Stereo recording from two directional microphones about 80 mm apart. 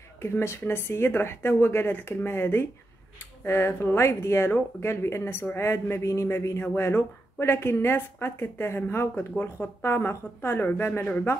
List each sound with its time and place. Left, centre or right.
0.2 s speech: left